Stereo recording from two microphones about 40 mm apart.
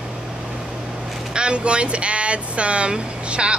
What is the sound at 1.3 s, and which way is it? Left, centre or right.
Speech, right.